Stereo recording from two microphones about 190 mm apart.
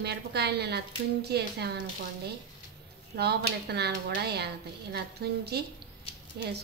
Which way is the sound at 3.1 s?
55° right (ahead or behind).